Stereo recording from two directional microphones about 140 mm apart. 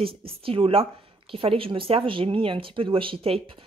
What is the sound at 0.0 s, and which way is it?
Speech, 40° right (ahead or behind).